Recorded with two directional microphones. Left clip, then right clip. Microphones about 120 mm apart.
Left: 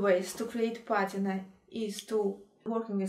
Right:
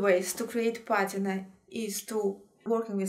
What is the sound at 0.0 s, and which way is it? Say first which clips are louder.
Speech: right 2 dB; 10° right (ahead or behind).